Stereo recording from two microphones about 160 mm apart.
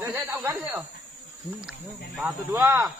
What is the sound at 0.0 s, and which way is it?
Snake, 15° right (ahead or behind).